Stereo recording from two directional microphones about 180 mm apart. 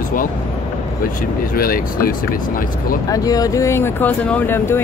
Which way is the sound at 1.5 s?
55° left (ahead or behind).